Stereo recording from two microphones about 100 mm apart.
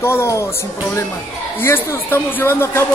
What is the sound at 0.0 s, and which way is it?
Speech, 25° left (ahead or behind).